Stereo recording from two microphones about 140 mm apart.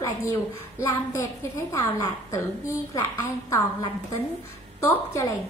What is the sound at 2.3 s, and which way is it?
A woman's voice, 20° left (ahead or behind).